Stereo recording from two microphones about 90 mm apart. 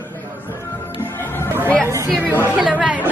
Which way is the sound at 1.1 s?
25° left (ahead or behind).